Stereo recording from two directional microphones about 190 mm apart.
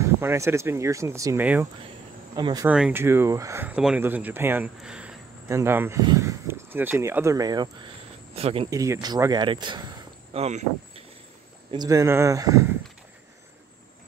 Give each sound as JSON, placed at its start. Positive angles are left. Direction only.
{"t": 0.0, "sound": "speech", "side_deg": -15}
{"t": 2.3, "sound": "speech", "side_deg": -20}
{"t": 2.7, "sound": "speech", "side_deg": -10}
{"t": 8.4, "sound": "speech", "side_deg": -30}
{"t": 8.6, "sound": "speech", "side_deg": -15}
{"t": 10.4, "sound": "speech", "side_deg": -35}
{"t": 11.7, "sound": "speech", "side_deg": -20}